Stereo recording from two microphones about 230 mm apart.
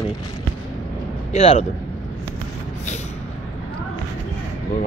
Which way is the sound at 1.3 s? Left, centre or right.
Left.